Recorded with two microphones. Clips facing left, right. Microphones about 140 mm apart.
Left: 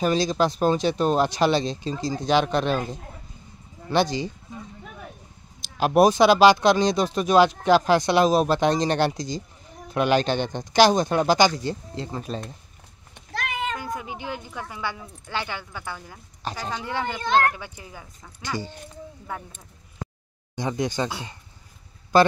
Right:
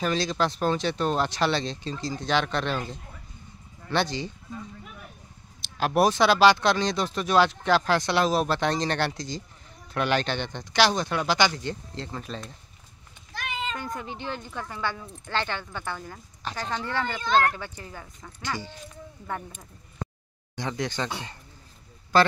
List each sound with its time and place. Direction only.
0.0 s speech: 15° left (ahead or behind)
5.6 s speech: 15° left (ahead or behind)
10.3 s speech: 45° left (ahead or behind)
11.7 s speech: 10° left (ahead or behind)
12.3 s speech: 40° left (ahead or behind)
13.3 s cat: 70° left (ahead or behind)
13.7 s speech: 5° left (ahead or behind)
20.5 s speech: 15° left (ahead or behind)